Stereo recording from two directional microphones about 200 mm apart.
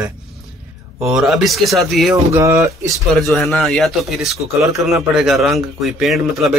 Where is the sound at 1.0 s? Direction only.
Centre (ahead or behind).